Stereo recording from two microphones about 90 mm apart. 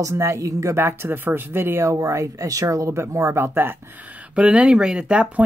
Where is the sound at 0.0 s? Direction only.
35° right (ahead or behind).